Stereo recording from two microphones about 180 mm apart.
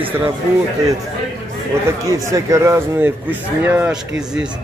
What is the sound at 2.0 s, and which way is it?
A man's voice, 20° right (ahead or behind).